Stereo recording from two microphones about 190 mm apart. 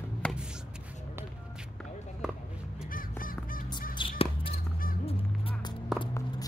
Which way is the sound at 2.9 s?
45° left (ahead or behind).